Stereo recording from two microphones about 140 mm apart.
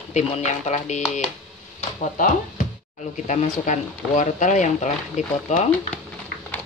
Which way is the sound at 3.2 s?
55° left (ahead or behind).